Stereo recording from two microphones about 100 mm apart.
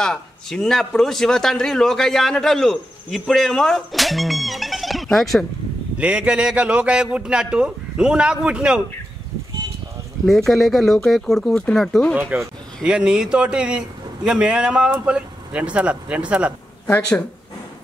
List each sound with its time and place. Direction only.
0.0 s a man's voice: 5° left (ahead or behind)
5.9 s a man's voice: 10° right (ahead or behind)
10.2 s a man's voice: 5° left (ahead or behind)
12.8 s a man's voice: 10° right (ahead or behind)
16.8 s speech: 20° left (ahead or behind)